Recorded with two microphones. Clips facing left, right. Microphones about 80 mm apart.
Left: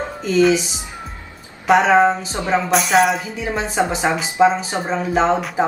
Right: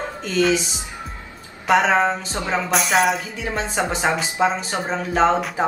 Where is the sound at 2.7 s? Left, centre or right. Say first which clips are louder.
Left 3 dB; centre.